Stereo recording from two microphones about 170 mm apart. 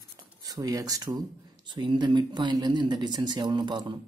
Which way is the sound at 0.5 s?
20° right (ahead or behind).